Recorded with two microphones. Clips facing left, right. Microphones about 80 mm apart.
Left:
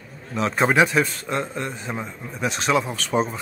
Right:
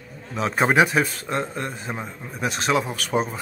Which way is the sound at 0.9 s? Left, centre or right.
Centre.